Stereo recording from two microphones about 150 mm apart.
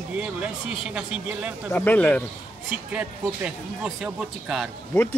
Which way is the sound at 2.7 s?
5° right (ahead or behind).